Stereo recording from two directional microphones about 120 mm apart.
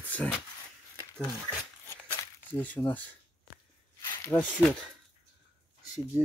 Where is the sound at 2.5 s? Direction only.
15° left (ahead or behind).